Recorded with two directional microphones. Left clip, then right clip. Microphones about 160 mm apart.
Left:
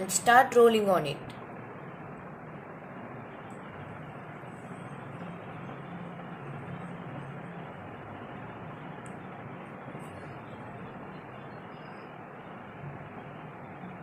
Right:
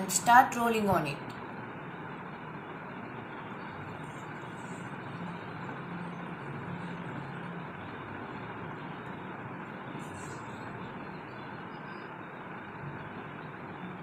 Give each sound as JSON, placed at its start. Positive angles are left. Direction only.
{"t": 0.1, "sound": "a woman's voice", "side_deg": 90}